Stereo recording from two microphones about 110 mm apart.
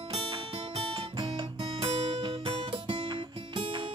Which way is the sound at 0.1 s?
55° right (ahead or behind).